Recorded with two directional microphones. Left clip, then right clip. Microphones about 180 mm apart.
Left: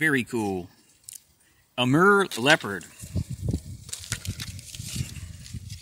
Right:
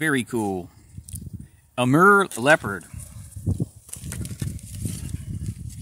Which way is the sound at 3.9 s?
45° right (ahead or behind).